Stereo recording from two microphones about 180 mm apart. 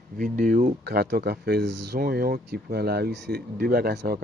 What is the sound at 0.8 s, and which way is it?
Speech, 60° right (ahead or behind).